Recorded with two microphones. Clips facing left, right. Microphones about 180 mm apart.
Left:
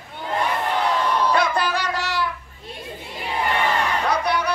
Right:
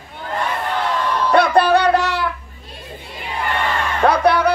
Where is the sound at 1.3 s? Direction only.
65° right (ahead or behind).